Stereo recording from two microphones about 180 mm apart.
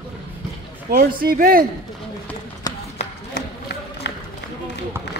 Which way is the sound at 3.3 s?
65° left (ahead or behind).